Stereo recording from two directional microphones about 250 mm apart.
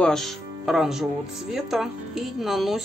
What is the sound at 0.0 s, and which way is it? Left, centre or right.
Speech, centre.